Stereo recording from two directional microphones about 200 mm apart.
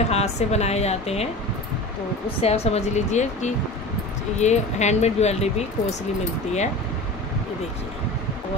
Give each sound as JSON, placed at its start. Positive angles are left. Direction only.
{"t": 0.1, "sound": "speech", "side_deg": 30}
{"t": 2.4, "sound": "speech", "side_deg": 30}